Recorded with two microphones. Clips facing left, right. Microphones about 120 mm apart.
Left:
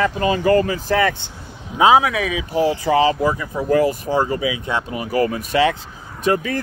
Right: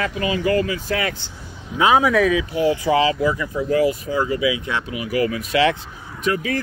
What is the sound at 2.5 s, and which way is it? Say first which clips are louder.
Speech: left 1 dB; 35° left (ahead or behind).